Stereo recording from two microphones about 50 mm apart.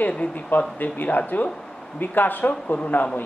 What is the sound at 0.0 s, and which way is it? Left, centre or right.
Speech, left.